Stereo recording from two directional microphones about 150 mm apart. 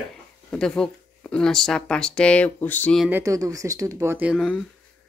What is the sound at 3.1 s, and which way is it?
Speech, 15° right (ahead or behind).